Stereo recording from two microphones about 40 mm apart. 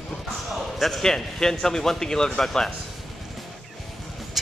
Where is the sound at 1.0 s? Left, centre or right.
Centre.